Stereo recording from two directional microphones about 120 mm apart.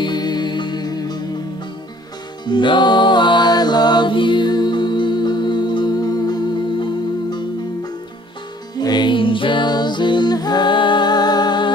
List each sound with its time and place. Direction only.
0.0 s music: 35° left (ahead or behind)
2.4 s music: 40° left (ahead or behind)